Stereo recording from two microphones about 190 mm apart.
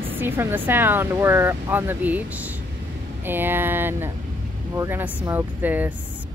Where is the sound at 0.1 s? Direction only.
10° right (ahead or behind).